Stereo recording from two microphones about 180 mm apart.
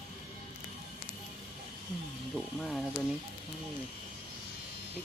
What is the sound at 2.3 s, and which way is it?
Speech, centre (ahead or behind).